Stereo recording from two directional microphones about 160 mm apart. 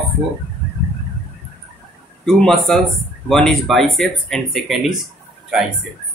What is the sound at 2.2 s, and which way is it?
Speech, 5° left (ahead or behind).